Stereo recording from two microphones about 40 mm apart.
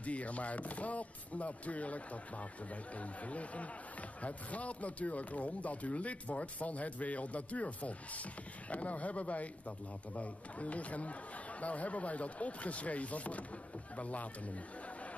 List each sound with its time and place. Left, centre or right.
0.0 s speech: left